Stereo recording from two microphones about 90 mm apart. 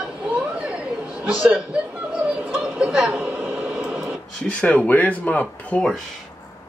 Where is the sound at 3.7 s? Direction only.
5° right (ahead or behind).